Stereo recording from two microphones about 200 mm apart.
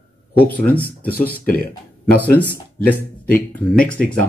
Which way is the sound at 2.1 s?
10° left (ahead or behind).